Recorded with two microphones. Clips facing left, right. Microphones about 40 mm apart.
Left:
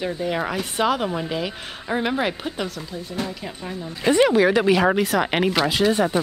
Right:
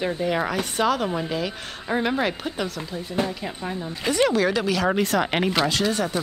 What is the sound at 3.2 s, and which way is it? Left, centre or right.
Speech, centre.